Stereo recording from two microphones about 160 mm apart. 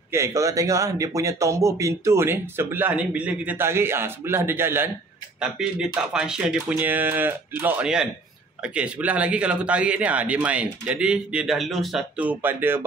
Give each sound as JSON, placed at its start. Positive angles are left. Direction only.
{"t": 0.1, "sound": "speech", "side_deg": -20}